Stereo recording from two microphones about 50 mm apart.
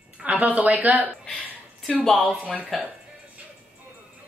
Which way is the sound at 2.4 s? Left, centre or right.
Right.